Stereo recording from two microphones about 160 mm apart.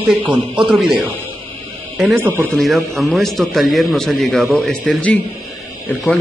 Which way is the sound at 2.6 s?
Centre (ahead or behind).